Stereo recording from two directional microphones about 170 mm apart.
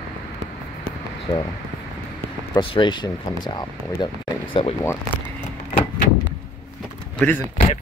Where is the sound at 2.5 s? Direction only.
30° left (ahead or behind).